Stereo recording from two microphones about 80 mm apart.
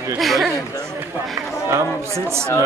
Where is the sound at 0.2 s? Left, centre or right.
Centre.